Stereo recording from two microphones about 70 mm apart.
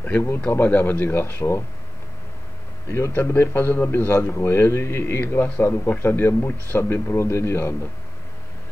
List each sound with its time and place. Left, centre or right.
0.0 s a man's voice: left
3.2 s a man's voice: left